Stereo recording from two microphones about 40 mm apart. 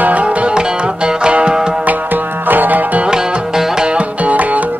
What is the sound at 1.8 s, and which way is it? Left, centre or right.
Music, right.